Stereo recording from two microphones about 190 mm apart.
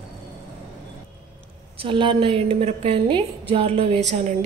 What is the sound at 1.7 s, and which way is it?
A woman's voice, 25° right (ahead or behind).